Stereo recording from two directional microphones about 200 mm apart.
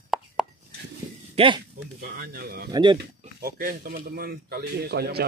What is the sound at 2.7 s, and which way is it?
Speech, 25° right (ahead or behind).